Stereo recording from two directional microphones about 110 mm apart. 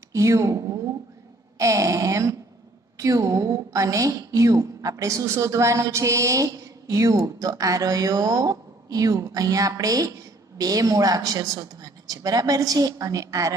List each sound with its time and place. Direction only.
0.1 s a woman's voice: 30° right (ahead or behind)